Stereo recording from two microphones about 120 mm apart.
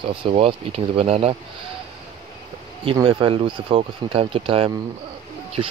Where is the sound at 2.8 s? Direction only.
40° right (ahead or behind).